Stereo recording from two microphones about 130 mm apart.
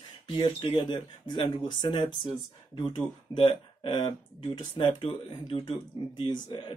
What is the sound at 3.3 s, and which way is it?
Speech, 40° left (ahead or behind).